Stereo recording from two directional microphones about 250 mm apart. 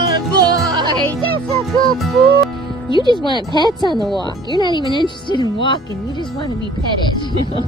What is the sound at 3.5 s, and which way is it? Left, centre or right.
Speech, centre.